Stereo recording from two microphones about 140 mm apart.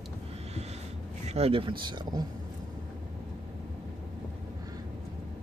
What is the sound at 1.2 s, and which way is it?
Speech, 50° right (ahead or behind).